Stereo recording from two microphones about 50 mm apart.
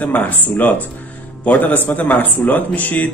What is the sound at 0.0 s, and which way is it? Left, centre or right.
A man's voice, left.